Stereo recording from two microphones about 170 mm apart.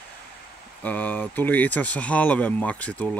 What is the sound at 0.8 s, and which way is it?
Speech, 10° left (ahead or behind).